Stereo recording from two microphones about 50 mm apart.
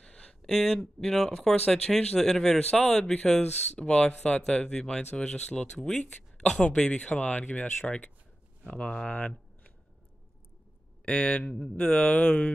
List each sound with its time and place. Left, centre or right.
0.0 s speech: centre
7.1 s speech: left
11.1 s speech: left